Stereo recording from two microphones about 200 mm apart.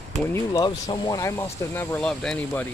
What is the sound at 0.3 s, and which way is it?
Speech, 20° left (ahead or behind).